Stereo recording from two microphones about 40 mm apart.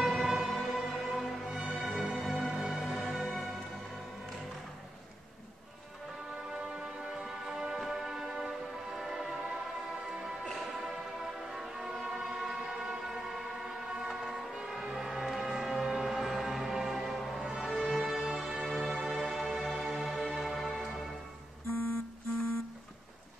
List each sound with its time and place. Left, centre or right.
0.0 s music: centre
6.5 s music: centre
10.6 s music: centre
14.2 s vehicle: centre
14.5 s music: centre